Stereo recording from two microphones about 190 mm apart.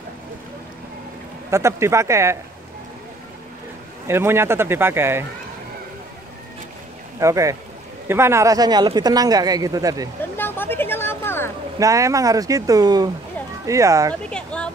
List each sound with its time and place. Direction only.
1.5 s speech: 15° right (ahead or behind)
4.1 s speech: 15° right (ahead or behind)
7.2 s speech: 15° right (ahead or behind)
10.3 s speech: 10° left (ahead or behind)
11.8 s speech: 15° right (ahead or behind)
14.3 s a sound: 5° left (ahead or behind)